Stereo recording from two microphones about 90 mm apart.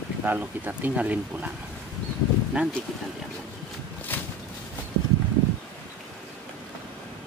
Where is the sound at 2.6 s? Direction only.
15° right (ahead or behind).